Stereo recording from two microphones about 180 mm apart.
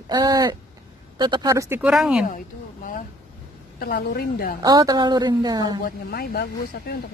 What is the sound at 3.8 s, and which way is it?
Speech, 60° left (ahead or behind).